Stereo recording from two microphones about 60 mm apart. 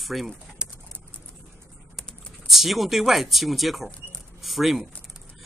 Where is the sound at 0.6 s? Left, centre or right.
Centre.